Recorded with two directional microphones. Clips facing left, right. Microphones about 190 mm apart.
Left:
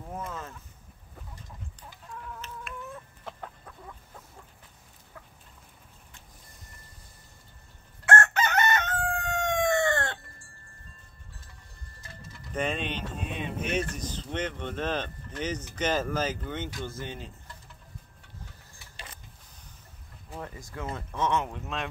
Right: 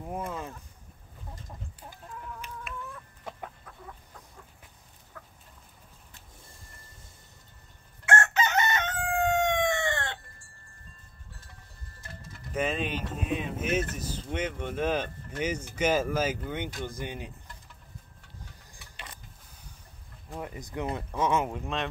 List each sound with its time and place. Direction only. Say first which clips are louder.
0.1 s a sound: right 3 dB; 15° right (ahead or behind)
2.4 s chicken: even; 10° right (ahead or behind)
8.0 s chicken: left 1 dB; 55° left (ahead or behind)
12.5 s speech: right 1 dB; 5° right (ahead or behind)
20.3 s speech: right 3 dB; 15° right (ahead or behind); by 21.8 s centre (ahead or behind)